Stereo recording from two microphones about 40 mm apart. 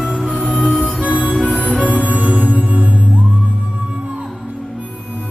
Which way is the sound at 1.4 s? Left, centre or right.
Left.